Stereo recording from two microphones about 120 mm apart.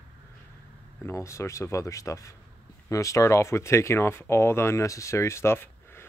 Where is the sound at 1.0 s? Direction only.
25° left (ahead or behind).